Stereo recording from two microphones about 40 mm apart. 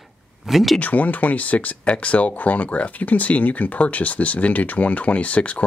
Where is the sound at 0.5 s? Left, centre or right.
Centre.